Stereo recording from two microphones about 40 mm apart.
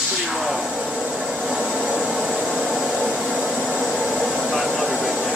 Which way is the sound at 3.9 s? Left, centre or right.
Right.